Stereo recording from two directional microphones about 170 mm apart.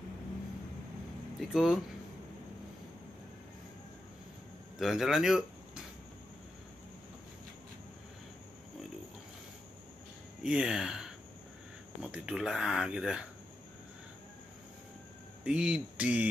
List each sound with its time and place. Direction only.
1.5 s speech: centre (ahead or behind)
4.7 s speech: centre (ahead or behind)
10.4 s speech: 5° right (ahead or behind)
15.4 s speech: 5° right (ahead or behind)